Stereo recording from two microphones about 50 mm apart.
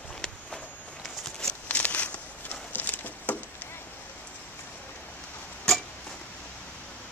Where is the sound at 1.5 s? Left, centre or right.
Left.